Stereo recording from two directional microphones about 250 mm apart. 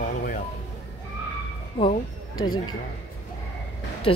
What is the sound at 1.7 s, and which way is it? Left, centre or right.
Speech, centre.